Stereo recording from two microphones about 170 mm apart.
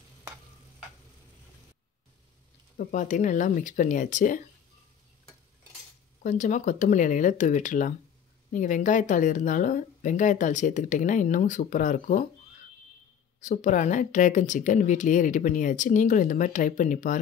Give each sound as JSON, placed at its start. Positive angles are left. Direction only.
{"t": 2.8, "sound": "speech", "side_deg": 50}
{"t": 6.2, "sound": "speech", "side_deg": 45}
{"t": 13.4, "sound": "speech", "side_deg": 45}